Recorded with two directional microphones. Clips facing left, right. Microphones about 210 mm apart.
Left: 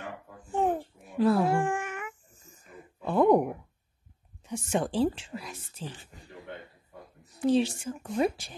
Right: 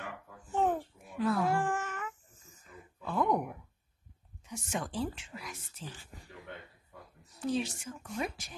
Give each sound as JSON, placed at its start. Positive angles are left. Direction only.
{"t": 0.5, "sound": "babbling", "side_deg": 10}
{"t": 0.7, "sound": "cat", "side_deg": 30}
{"t": 1.7, "sound": "a sound", "side_deg": 15}
{"t": 3.0, "sound": "a sound", "side_deg": 30}
{"t": 4.5, "sound": "speech", "side_deg": 30}
{"t": 7.5, "sound": "speech", "side_deg": 30}